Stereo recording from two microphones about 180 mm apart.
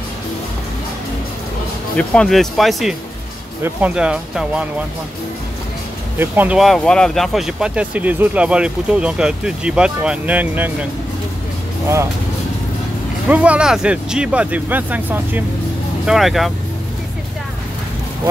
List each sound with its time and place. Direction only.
2.0 s speech: 5° left (ahead or behind)
6.1 s speech: 10° right (ahead or behind)
13.3 s speech: 5° right (ahead or behind)